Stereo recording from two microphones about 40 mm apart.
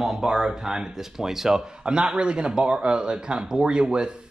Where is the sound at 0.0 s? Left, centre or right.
Centre.